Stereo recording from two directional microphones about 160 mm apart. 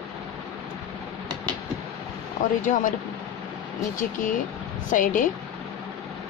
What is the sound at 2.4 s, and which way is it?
Speech, 60° left (ahead or behind).